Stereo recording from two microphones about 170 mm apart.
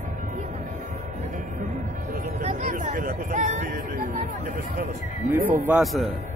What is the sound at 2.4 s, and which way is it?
Speech, 45° right (ahead or behind).